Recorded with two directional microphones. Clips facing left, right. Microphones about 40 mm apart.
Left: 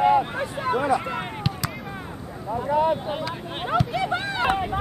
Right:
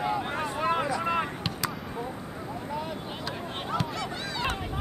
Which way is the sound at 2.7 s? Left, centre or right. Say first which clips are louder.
Left 15 dB; left.